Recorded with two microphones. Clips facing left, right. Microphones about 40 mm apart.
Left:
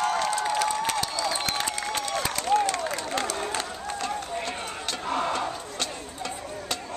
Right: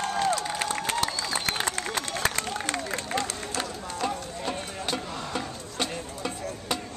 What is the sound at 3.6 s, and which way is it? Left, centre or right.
Run, centre.